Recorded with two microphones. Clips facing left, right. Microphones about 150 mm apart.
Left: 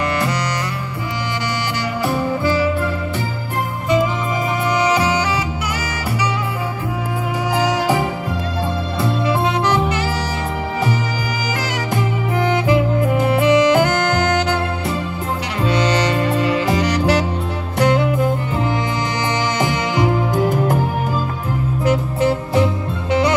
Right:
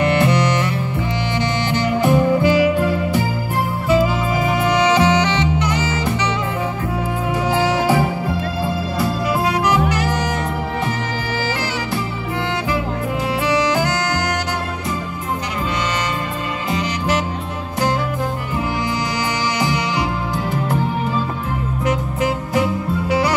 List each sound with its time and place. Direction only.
0.2 s music: 25° right (ahead or behind)
2.0 s music: 15° right (ahead or behind)
4.9 s music: centre (ahead or behind)
7.6 s music: 15° left (ahead or behind)
9.7 s saxophone: 30° left (ahead or behind)
13.2 s music: 55° left (ahead or behind)
13.7 s saxophone: 55° left (ahead or behind)
16.4 s music: 80° left
19.6 s music: 50° left (ahead or behind)